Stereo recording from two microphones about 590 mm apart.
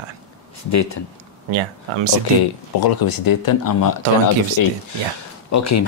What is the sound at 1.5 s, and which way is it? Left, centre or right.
Speech, right.